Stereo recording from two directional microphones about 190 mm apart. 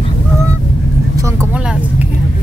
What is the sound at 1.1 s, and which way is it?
Vehicle, 15° right (ahead or behind).